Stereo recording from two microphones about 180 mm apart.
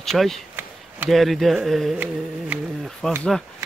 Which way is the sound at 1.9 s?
10° right (ahead or behind).